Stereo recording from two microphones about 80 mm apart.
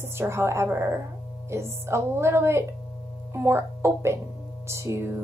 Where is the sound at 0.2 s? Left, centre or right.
Right.